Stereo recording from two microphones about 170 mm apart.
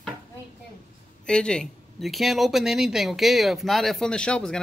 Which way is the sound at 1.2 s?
5° left (ahead or behind).